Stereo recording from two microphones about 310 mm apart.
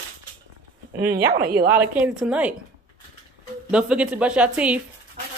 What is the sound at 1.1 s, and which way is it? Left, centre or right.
Speech, right.